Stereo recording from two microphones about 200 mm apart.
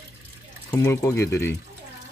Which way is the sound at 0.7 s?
10° left (ahead or behind).